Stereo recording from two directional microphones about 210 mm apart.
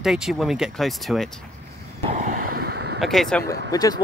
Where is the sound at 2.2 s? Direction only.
50° right (ahead or behind).